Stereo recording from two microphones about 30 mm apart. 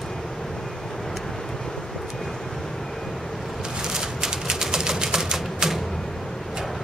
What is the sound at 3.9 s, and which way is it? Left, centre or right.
Typewriter, centre.